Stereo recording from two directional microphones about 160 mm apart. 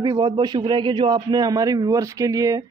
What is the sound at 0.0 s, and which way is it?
A man's voice, 25° right (ahead or behind).